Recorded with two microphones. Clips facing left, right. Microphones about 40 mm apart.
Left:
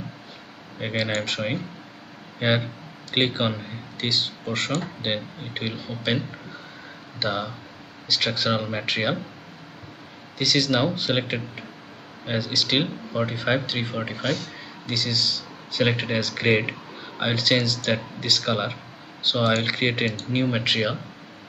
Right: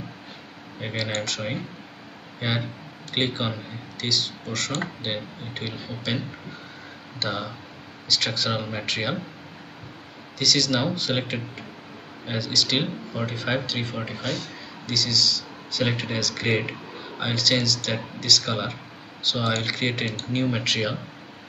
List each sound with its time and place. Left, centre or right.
0.7 s speech: centre
7.2 s speech: centre
10.4 s speech: centre